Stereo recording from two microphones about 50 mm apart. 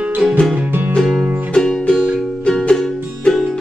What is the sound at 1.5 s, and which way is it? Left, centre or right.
Music, centre.